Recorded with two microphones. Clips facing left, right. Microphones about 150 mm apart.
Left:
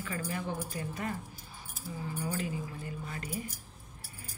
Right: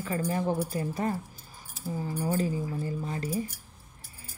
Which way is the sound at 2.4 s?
35° right (ahead or behind).